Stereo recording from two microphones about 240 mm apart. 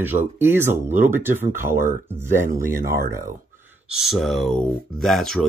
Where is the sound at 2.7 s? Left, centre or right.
Right.